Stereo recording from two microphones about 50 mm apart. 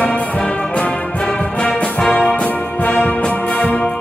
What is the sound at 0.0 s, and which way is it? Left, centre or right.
Music, left.